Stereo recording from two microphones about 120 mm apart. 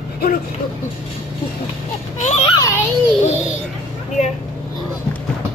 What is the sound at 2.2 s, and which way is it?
Speech, 70° left (ahead or behind).